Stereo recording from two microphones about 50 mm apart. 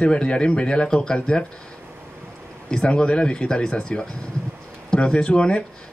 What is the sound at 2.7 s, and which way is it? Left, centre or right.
Speech, centre.